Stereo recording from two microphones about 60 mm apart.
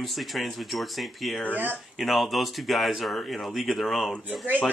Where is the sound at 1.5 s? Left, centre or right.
Right.